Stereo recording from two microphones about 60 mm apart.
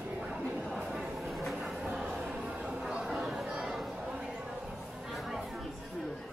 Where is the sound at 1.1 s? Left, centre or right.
Centre.